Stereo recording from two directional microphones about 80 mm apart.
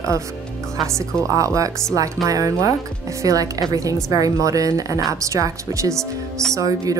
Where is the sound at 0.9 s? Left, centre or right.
Right.